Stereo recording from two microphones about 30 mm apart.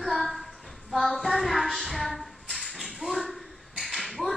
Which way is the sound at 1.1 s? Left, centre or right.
Centre.